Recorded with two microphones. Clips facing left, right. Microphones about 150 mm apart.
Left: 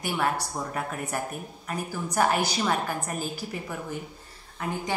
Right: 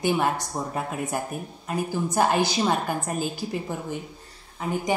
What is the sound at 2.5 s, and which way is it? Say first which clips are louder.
A woman's voice: right 3 dB; 25° right (ahead or behind).